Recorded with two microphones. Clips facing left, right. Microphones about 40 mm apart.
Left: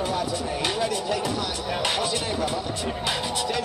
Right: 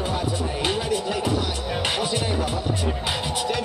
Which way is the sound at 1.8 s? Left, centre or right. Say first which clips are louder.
Right 1 dB; centre.